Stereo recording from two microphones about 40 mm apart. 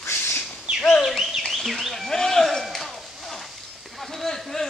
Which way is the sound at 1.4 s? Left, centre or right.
Centre.